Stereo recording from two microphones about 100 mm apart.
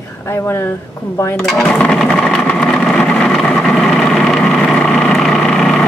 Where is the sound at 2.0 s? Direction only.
5° left (ahead or behind).